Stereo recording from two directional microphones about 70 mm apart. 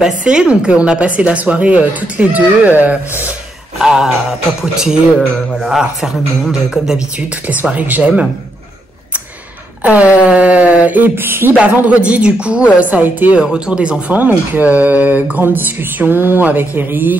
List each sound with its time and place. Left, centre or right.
0.0 s speech: centre
3.7 s speech: centre
7.4 s speech: right
9.8 s speech: centre
11.5 s speech: right
13.4 s speech: centre; by 17.2 s right